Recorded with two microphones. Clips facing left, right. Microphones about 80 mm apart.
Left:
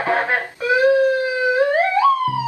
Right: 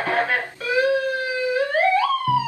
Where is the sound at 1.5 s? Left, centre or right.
Left.